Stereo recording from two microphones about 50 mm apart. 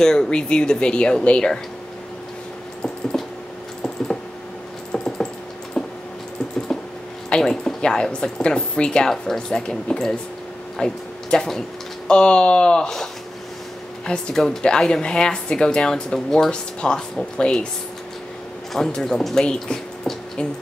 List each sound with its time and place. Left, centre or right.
0.0 s speech: centre
2.8 s a sound: centre
4.9 s typing: centre
5.8 s a sound: centre
7.2 s speech: centre
14.3 s speech: centre
18.9 s speech: centre